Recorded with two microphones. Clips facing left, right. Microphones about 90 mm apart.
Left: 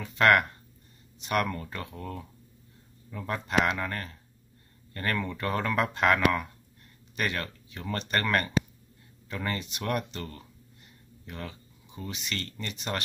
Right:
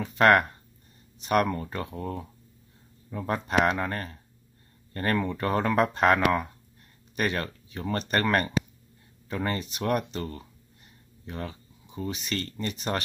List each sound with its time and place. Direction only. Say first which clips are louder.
0.0 s speech: right 2 dB; 35° right (ahead or behind)